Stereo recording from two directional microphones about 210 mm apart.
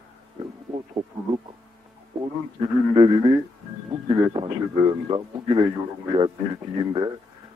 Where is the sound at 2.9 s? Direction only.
20° right (ahead or behind).